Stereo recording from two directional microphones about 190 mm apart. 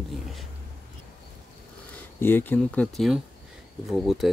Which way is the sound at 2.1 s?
10° left (ahead or behind).